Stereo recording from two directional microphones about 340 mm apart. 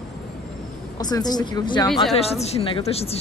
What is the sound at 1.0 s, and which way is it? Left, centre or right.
Speech, centre.